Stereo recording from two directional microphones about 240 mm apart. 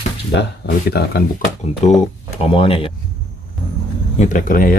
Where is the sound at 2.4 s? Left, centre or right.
Left.